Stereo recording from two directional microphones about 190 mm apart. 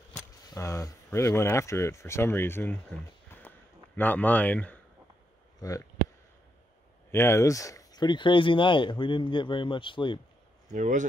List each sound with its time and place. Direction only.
0.5 s speech: 15° left (ahead or behind)
7.1 s speech: 15° left (ahead or behind)
10.7 s speech: 40° right (ahead or behind)